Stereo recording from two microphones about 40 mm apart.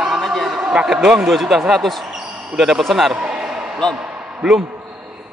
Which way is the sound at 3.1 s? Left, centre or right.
Right.